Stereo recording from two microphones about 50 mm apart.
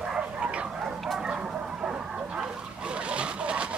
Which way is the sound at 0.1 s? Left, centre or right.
Right.